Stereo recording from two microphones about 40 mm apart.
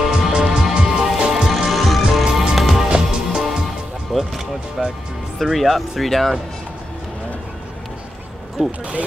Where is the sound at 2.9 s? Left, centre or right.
Centre.